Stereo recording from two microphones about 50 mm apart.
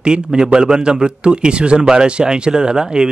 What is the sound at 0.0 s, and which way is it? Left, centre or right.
A man's voice, centre.